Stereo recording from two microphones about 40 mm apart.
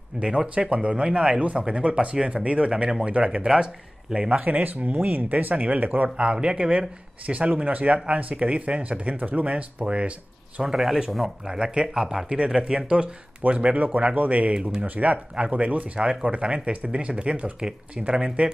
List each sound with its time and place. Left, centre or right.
0.2 s speech: right
3.4 s speech: centre
4.3 s speech: right
6.0 s speech: right
10.6 s speech: centre; by 13.7 s right
13.7 s speech: right
14.5 s speech: right
15.3 s speech: right
15.6 s speech: right
16.0 s speech: right